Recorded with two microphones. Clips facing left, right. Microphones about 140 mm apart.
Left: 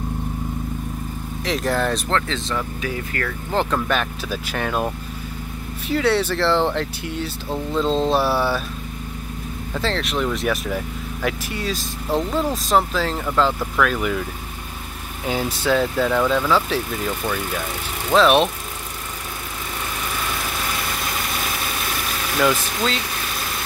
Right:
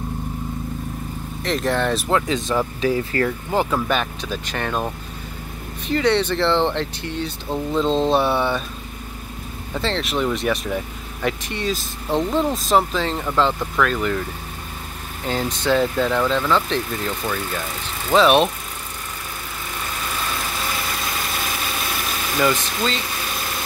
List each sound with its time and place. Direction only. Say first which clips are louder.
1.4 s speech: right 1 dB; centre (ahead or behind); by 2.5 s 15° right (ahead or behind)
2.5 s speech: right 7 dB; 30° right (ahead or behind)
3.5 s speech: even; 10° right (ahead or behind)
9.8 s speech: right 1 dB; centre (ahead or behind)
15.2 s speech: even; 5° left (ahead or behind)
22.4 s speech: left 1 dB; centre (ahead or behind)